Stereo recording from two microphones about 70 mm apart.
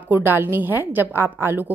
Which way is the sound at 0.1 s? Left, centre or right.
Right.